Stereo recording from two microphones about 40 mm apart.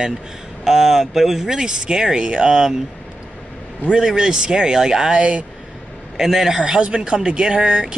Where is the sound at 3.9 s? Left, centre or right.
Centre.